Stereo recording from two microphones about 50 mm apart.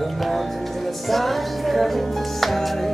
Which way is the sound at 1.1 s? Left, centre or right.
Centre.